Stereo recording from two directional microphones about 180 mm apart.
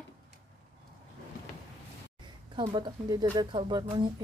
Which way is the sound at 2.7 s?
25° right (ahead or behind).